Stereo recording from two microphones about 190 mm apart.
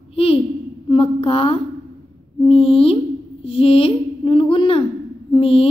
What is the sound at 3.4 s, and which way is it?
A woman's voice, 30° left (ahead or behind).